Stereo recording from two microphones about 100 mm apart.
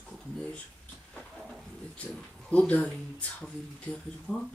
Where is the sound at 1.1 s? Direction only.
5° right (ahead or behind).